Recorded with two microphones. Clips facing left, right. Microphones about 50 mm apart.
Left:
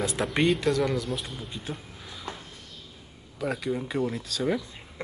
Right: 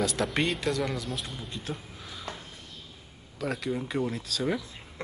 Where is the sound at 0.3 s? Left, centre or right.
Centre.